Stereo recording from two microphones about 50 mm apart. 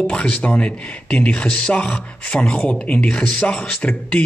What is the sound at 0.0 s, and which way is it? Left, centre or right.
A man's voice, left.